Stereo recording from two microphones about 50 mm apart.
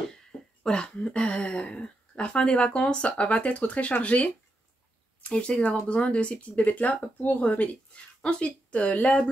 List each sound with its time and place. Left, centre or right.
0.7 s speech: centre